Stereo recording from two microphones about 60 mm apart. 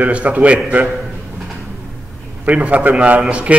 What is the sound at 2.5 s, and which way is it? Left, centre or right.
A man's voice, right.